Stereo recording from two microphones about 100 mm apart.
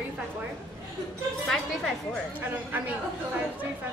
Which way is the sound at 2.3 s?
20° right (ahead or behind).